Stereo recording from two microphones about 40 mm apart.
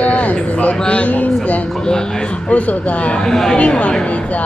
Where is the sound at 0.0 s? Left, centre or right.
Left.